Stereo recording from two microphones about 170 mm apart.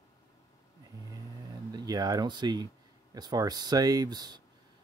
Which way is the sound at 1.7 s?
25° right (ahead or behind).